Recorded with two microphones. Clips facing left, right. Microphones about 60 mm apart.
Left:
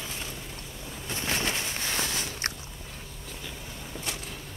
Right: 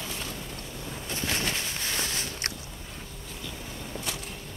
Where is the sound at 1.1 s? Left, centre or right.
Left.